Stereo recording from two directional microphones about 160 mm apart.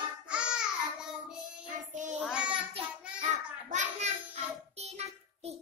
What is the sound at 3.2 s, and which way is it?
Child singing, 50° right (ahead or behind).